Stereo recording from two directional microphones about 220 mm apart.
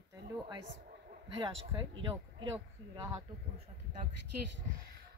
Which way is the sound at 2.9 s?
20° right (ahead or behind).